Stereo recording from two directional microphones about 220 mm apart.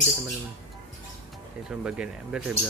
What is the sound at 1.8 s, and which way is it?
Speech, 5° right (ahead or behind).